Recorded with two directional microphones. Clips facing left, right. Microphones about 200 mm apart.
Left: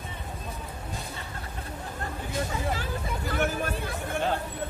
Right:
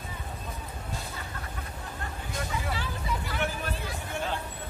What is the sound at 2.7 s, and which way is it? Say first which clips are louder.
Hubbub: left 2 dB; 45° left (ahead or behind).